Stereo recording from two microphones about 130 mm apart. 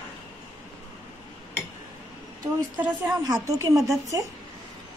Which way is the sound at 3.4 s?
25° right (ahead or behind).